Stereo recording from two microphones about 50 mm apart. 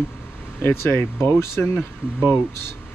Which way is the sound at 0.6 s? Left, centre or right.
Left.